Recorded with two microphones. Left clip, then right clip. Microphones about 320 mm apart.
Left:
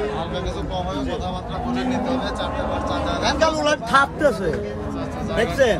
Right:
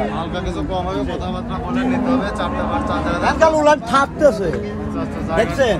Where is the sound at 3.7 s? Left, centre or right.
Centre.